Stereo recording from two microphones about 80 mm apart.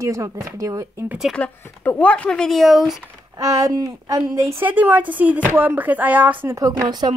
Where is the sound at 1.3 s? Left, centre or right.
Centre.